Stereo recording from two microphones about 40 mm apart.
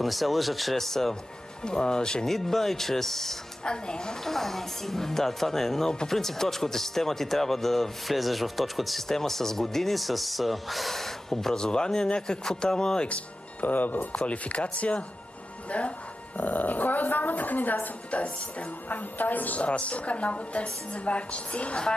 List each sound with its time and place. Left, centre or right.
0.0 s speech: centre
1.6 s speech: left
2.2 s speech: centre
3.6 s speech: left
5.9 s speech: centre
13.1 s speech: left
14.1 s a woman's voice: left
16.3 s speech: left
18.1 s a woman's voice: left
18.9 s speech: left
19.6 s a woman's voice: left